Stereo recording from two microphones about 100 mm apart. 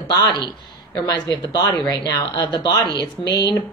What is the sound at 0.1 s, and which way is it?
Speech, 45° left (ahead or behind).